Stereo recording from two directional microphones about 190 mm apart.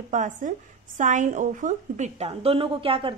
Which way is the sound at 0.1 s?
40° right (ahead or behind).